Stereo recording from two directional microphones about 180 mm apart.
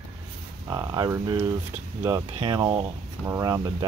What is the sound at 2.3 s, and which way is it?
Speech, 25° right (ahead or behind).